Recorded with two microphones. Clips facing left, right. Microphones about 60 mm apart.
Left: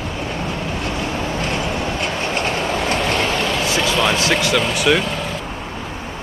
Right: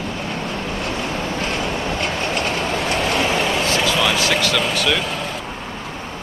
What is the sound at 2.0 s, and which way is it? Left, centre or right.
Train, left.